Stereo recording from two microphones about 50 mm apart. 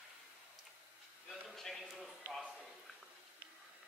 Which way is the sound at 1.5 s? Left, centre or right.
Centre.